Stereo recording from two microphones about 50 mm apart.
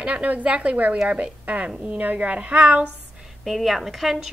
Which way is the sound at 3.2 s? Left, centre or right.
Centre.